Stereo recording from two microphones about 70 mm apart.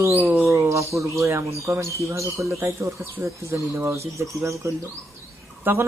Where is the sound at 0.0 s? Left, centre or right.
Right.